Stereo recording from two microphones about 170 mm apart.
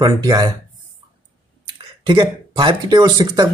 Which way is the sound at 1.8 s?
30° right (ahead or behind).